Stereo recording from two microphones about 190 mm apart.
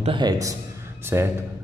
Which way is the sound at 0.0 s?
25° right (ahead or behind).